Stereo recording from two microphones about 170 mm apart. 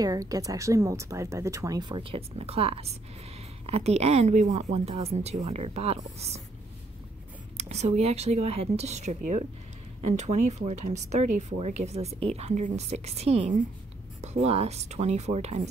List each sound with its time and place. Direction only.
0.0 s speech: 20° right (ahead or behind); by 6.4 s 40° right (ahead or behind)
7.5 s speech: 40° right (ahead or behind)